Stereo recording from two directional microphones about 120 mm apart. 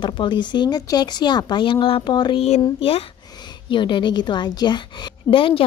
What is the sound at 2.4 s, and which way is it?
Speech, 60° left (ahead or behind).